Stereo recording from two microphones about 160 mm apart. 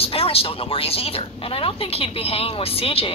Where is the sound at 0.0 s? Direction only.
35° left (ahead or behind).